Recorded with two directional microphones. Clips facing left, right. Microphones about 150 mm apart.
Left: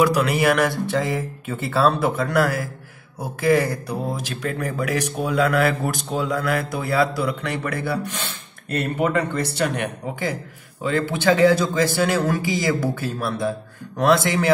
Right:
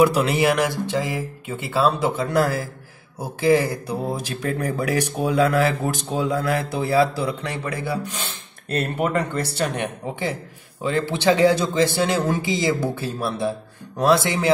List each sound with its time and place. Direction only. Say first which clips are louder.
0.0 s speech: right 1 dB; 25° right (ahead or behind)
8.6 s speech: left 1 dB; 35° right (ahead or behind)
9.8 s speech: even; 20° right (ahead or behind)